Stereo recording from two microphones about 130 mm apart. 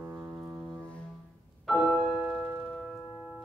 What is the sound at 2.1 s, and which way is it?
Music, 15° right (ahead or behind).